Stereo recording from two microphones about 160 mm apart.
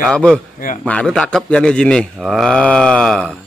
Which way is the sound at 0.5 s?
55° left (ahead or behind).